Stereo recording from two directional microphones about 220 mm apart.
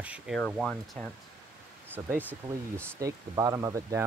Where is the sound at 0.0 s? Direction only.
5° right (ahead or behind).